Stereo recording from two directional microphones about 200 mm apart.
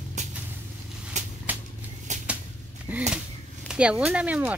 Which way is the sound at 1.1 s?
35° right (ahead or behind).